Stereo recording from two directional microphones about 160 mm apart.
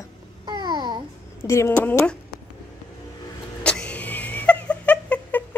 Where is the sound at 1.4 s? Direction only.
15° left (ahead or behind).